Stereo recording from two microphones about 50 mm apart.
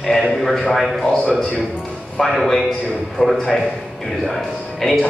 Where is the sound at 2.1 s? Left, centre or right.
Centre.